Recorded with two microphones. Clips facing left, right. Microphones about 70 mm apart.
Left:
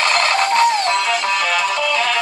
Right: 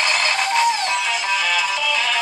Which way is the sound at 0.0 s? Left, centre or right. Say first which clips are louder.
Left 4 dB; left.